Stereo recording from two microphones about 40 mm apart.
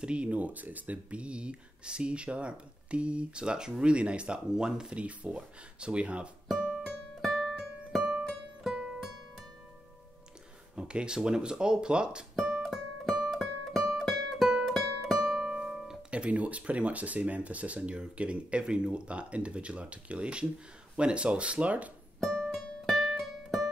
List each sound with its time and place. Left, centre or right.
0.0 s speech: right
1.1 s speech: right
4.9 s speech: right
6.7 s music: centre
8.7 s music: centre
10.8 s a sound: right
11.1 s speech: centre
12.4 s music: centre
16.1 s speech: right
22.5 s music: centre